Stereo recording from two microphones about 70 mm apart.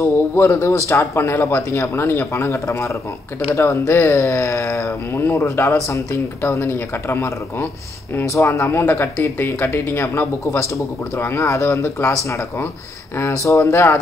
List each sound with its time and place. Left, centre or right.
0.4 s speech: left